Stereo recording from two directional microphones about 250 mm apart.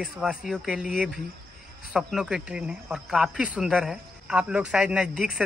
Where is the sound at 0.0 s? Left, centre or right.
Centre.